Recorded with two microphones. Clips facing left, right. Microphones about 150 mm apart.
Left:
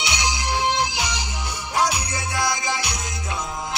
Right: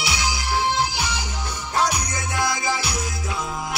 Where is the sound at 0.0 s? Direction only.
20° left (ahead or behind).